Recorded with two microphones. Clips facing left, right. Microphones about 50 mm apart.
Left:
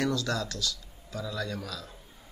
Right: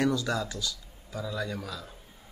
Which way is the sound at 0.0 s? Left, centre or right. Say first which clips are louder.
Right 2 dB; centre.